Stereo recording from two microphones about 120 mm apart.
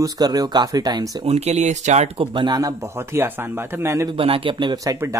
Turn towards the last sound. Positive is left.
turn(degrees=-25)  # may be behind; listen again after turning